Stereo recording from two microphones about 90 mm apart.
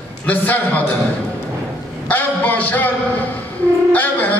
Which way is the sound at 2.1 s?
20° left (ahead or behind).